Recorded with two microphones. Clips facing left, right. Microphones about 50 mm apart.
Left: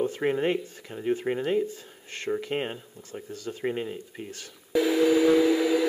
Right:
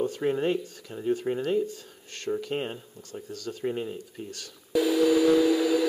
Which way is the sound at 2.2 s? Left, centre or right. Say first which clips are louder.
Left 1 dB; left.